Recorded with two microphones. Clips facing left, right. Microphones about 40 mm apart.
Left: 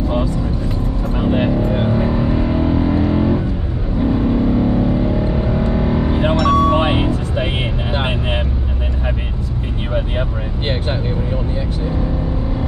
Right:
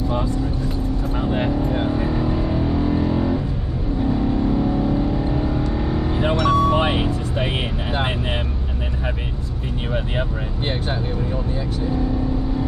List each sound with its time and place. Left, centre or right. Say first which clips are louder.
1.1 s vehicle: left 6 dB; left
6.3 s music: left 3 dB; left
6.7 s music: left 3 dB; left